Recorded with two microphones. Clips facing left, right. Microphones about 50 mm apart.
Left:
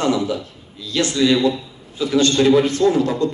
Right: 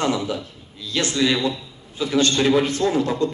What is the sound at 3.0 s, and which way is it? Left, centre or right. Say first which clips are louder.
Speech: left 2 dB; right.